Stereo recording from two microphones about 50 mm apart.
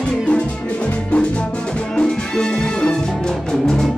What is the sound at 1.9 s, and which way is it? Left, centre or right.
Music, centre.